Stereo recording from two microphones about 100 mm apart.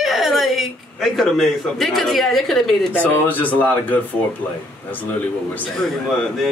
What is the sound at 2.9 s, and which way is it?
Speech, 15° left (ahead or behind).